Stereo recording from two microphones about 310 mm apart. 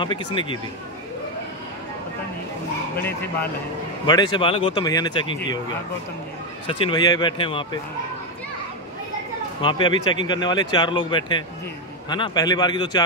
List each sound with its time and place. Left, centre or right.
0.3 s speech: centre
4.0 s speech: centre
6.7 s speech: centre
9.6 s speech: centre